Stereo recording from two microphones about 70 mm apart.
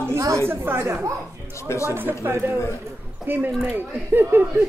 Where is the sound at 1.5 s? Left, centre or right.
Left.